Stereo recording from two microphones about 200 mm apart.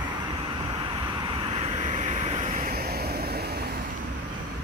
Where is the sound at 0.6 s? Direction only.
25° right (ahead or behind); by 3.8 s 50° right (ahead or behind).